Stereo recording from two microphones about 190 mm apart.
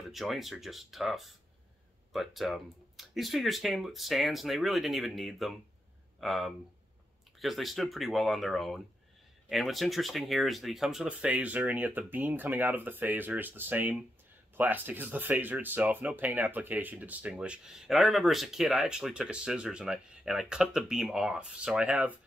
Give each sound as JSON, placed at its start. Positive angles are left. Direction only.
{"t": 0.1, "sound": "speech", "side_deg": 0}